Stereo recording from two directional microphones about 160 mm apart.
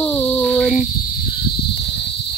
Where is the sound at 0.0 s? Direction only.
10° left (ahead or behind).